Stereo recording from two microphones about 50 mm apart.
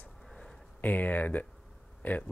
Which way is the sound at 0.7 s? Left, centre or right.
Left.